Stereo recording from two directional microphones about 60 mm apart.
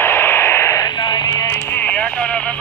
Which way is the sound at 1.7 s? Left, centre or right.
Left.